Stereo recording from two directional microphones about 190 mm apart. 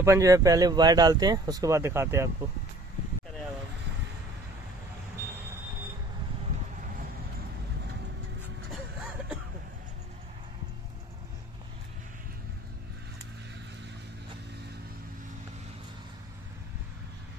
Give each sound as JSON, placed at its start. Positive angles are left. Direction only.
{"t": 0.0, "sound": "speech", "side_deg": -15}